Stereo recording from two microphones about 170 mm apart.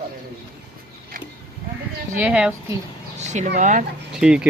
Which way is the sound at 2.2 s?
5° right (ahead or behind).